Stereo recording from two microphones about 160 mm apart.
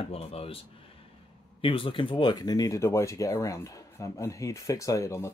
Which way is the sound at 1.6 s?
35° left (ahead or behind).